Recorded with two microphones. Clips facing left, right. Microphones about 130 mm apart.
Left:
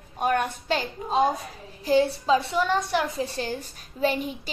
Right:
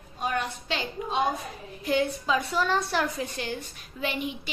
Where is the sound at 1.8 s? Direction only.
30° left (ahead or behind).